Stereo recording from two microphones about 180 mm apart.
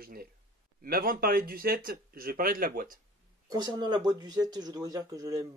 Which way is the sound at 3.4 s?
20° right (ahead or behind).